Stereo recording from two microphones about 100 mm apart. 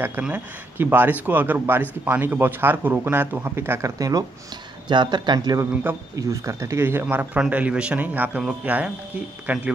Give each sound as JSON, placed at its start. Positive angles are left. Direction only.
{"t": 0.2, "sound": "speech", "side_deg": -20}
{"t": 4.8, "sound": "speech", "side_deg": -50}
{"t": 5.6, "sound": "speech", "side_deg": -30}